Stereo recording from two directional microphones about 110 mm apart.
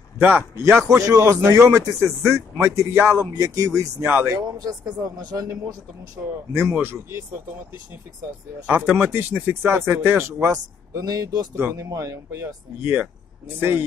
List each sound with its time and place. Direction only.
0.2 s speech: 15° right (ahead or behind)
4.0 s speech: 20° right (ahead or behind)
4.4 s a man's voice: 35° right (ahead or behind)
6.5 s speech: 20° right (ahead or behind)
8.6 s a man's voice: 10° right (ahead or behind); by 12.5 s 30° right (ahead or behind)
13.6 s speech: 20° right (ahead or behind)